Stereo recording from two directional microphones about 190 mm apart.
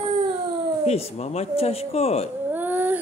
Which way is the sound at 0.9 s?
35° left (ahead or behind).